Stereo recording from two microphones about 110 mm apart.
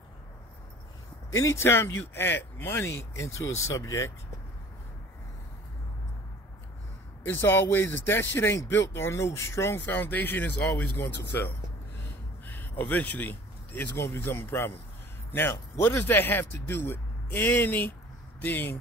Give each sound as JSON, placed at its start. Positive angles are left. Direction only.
{"t": 1.3, "sound": "speech", "side_deg": 25}
{"t": 7.2, "sound": "speech", "side_deg": 20}
{"t": 15.8, "sound": "speech", "side_deg": 20}